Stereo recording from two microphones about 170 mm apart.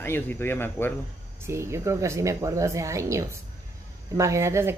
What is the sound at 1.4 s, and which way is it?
Speech, 15° right (ahead or behind).